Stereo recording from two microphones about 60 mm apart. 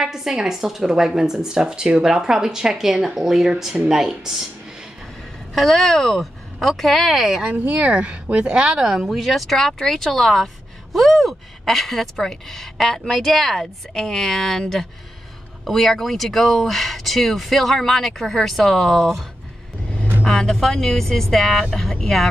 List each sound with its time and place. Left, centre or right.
0.0 s a woman's voice: centre
5.5 s speech: centre
7.5 s speech: right; by 14.6 s centre
15.6 s speech: centre
20.2 s speech: centre